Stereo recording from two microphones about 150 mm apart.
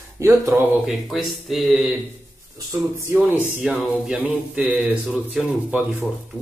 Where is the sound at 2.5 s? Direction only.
20° right (ahead or behind).